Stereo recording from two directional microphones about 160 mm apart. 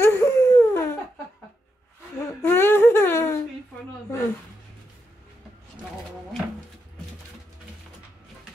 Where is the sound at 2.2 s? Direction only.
15° left (ahead or behind).